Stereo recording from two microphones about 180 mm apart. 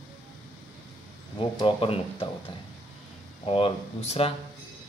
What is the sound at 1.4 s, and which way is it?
Speech, 30° left (ahead or behind).